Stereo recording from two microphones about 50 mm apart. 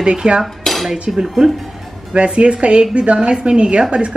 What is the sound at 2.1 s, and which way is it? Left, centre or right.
A woman's voice, right.